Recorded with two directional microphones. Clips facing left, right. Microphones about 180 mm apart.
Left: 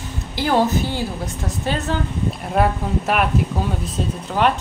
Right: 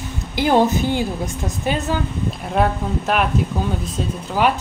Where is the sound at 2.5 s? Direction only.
Centre (ahead or behind).